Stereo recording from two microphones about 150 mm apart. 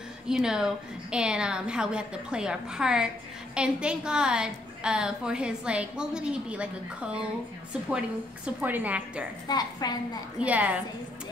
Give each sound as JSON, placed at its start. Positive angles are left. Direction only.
{"t": 0.3, "sound": "a woman's voice", "side_deg": -5}
{"t": 8.5, "sound": "a woman's voice", "side_deg": -10}
{"t": 9.5, "sound": "a woman's voice", "side_deg": 25}
{"t": 10.4, "sound": "a woman's voice", "side_deg": -10}